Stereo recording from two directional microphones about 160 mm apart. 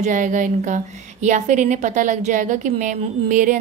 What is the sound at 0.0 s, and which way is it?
Speech, 55° right (ahead or behind).